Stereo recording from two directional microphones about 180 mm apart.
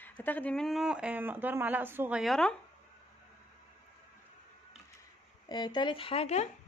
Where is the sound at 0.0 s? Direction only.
10° left (ahead or behind).